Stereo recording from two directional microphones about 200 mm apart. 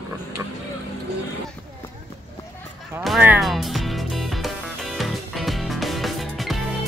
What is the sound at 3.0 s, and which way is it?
Music, 5° right (ahead or behind).